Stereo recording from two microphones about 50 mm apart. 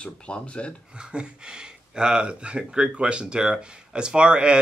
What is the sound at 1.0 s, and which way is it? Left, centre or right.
Speech, centre.